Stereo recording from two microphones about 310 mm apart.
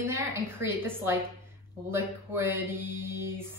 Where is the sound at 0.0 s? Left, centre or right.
Centre.